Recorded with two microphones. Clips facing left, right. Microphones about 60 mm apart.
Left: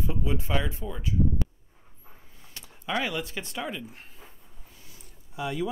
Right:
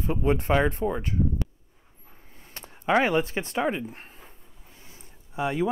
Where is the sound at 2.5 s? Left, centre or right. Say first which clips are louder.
Right 8 dB; right.